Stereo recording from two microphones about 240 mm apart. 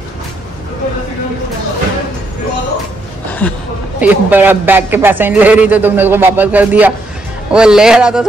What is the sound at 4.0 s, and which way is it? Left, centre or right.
A man's voice, centre.